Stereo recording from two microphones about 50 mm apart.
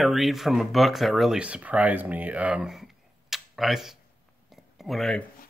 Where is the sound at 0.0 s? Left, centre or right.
Centre.